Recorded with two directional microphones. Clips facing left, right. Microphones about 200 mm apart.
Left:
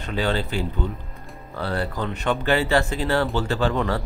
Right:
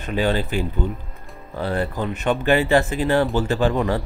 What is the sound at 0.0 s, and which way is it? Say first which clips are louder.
Speech: right 3 dB; 15° right (ahead or behind).